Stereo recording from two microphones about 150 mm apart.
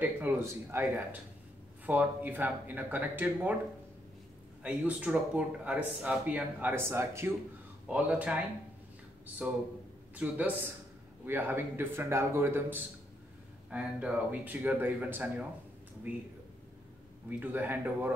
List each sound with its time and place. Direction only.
0.0 s speech: 15° right (ahead or behind)
4.6 s speech: 10° right (ahead or behind)
9.4 s speech: 10° right (ahead or behind)
17.3 s speech: 10° right (ahead or behind)